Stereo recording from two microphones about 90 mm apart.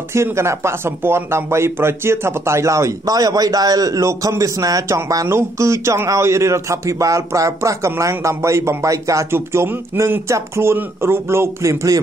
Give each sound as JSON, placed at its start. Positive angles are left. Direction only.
{"t": 0.1, "sound": "speech", "side_deg": -30}